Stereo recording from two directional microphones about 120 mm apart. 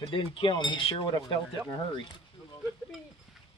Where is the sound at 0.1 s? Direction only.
45° left (ahead or behind).